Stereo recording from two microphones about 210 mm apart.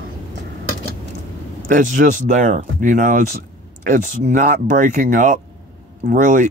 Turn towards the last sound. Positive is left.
turn(degrees=-35)  # may be behind; listen again after turning